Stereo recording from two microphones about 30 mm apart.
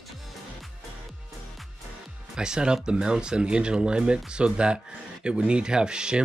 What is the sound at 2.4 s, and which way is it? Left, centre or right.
Speech, right.